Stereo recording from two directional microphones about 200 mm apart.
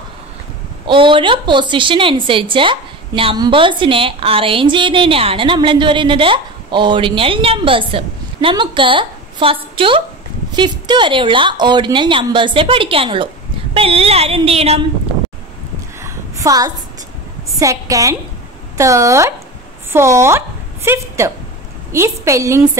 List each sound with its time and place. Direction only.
0.8 s a woman's voice: 25° right (ahead or behind)
16.0 s a sound: 15° right (ahead or behind)
17.6 s a woman's voice: 15° right (ahead or behind)